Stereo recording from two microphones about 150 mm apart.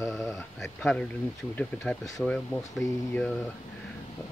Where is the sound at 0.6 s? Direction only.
5° left (ahead or behind).